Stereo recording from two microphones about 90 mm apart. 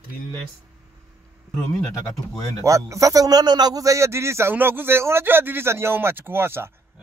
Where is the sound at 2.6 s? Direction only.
35° right (ahead or behind).